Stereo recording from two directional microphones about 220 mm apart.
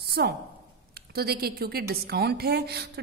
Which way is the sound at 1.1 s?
45° right (ahead or behind).